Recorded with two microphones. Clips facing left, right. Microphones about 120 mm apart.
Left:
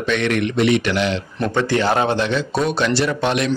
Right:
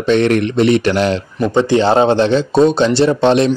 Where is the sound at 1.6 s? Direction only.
25° right (ahead or behind).